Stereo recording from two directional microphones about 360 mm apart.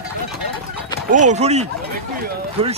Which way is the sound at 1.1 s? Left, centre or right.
Centre.